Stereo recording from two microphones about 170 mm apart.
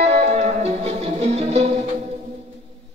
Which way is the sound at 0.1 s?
40° right (ahead or behind).